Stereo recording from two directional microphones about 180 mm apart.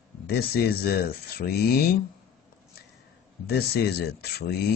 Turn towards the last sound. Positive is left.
turn(degrees=60)  # may be behind; listen again after turning